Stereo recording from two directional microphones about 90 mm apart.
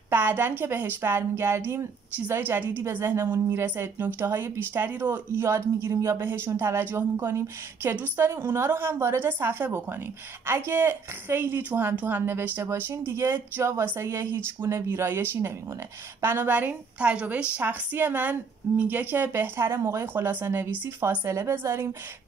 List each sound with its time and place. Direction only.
0.1 s speech: 25° right (ahead or behind)